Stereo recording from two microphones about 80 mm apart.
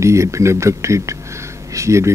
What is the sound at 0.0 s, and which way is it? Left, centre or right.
Speech, right.